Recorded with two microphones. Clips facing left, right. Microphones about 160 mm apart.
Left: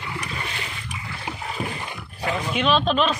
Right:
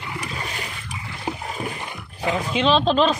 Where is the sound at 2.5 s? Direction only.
30° right (ahead or behind).